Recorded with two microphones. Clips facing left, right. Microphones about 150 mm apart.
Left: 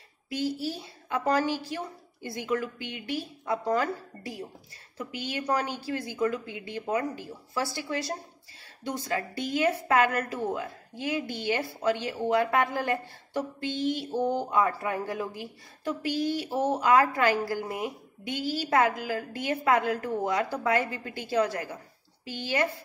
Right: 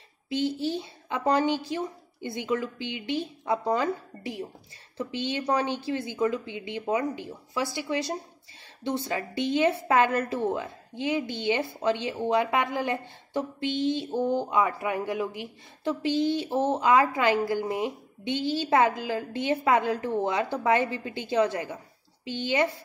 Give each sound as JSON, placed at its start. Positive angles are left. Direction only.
{"t": 0.3, "sound": "a woman's voice", "side_deg": -25}
{"t": 14.2, "sound": "speech", "side_deg": 15}
{"t": 14.5, "sound": "a woman's voice", "side_deg": -15}